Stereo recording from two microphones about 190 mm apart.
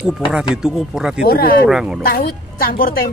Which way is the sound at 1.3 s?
55° left (ahead or behind).